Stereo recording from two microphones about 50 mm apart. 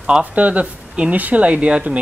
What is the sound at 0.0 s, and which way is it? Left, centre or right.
Speech, right.